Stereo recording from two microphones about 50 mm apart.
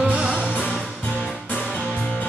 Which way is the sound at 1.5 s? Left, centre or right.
Left.